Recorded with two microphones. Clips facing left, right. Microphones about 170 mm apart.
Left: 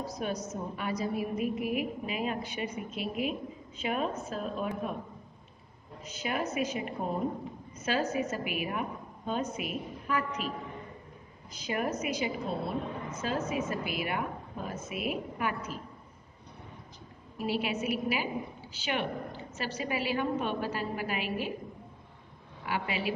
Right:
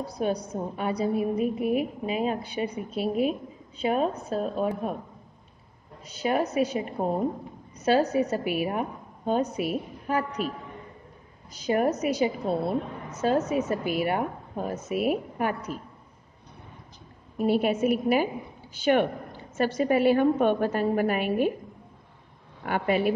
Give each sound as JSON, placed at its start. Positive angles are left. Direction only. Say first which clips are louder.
{"t": 0.2, "sound": "a woman's voice", "louder": "right 9 dB", "side_deg": -30}
{"t": 6.0, "sound": "a woman's voice", "louder": "right 7 dB", "side_deg": -35}
{"t": 11.6, "sound": "a woman's voice", "louder": "right 8 dB", "side_deg": -40}
{"t": 17.4, "sound": "a woman's voice", "louder": "right 9 dB", "side_deg": -50}
{"t": 22.7, "sound": "a woman's voice", "louder": "right 8 dB", "side_deg": -50}